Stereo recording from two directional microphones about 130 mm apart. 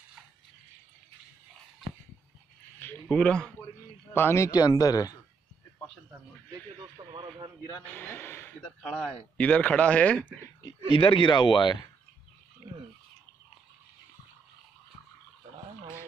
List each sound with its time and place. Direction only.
2.8 s speech: 15° left (ahead or behind)
4.1 s speech: 20° left (ahead or behind)
4.5 s speech: 30° left (ahead or behind)
7.2 s a man's voice: 35° right (ahead or behind)
7.8 s speech: 15° left (ahead or behind)
8.8 s speech: centre (ahead or behind)
10.9 s speech: 40° left (ahead or behind)